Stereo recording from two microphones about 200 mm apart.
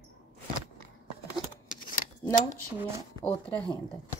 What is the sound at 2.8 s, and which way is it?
Speech, 15° right (ahead or behind).